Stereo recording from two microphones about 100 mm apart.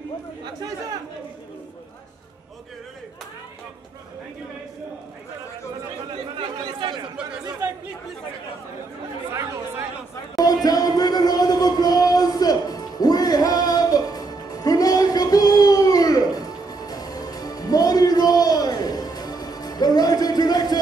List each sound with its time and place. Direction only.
6.8 s chatter: 55° right (ahead or behind)
9.3 s chatter: 30° right (ahead or behind)
10.3 s music: 40° left (ahead or behind)